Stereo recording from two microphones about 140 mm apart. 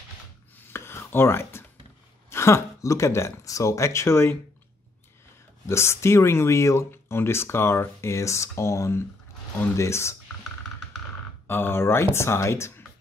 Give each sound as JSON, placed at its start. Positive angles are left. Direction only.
{"t": 0.7, "sound": "a sound", "side_deg": 15}
{"t": 2.2, "sound": "speech", "side_deg": 20}
{"t": 5.7, "sound": "speech", "side_deg": 20}
{"t": 11.4, "sound": "speech", "side_deg": 15}